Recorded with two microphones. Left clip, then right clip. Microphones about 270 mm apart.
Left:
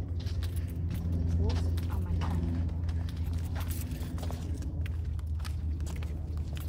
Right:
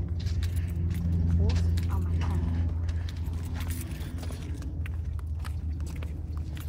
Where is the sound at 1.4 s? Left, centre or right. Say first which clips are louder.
Right 2 dB; centre.